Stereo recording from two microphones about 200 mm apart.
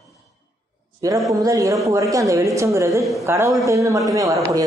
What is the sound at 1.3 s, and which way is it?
A woman's voice, 15° right (ahead or behind).